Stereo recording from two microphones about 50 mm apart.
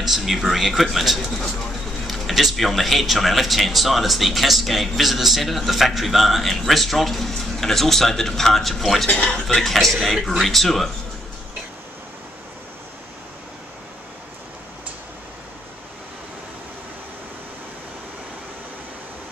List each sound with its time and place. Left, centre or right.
0.0 s speech: centre
9.1 s speech: left
9.5 s speech: centre